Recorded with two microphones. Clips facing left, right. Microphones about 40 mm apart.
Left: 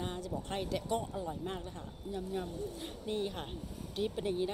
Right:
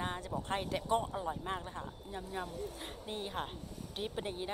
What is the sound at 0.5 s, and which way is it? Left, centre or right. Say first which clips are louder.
Speech: right 2 dB; right.